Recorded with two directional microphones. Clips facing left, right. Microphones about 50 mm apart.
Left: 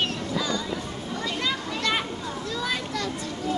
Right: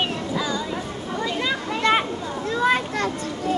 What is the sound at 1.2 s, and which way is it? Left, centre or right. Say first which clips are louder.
Children playing: right 3 dB; centre.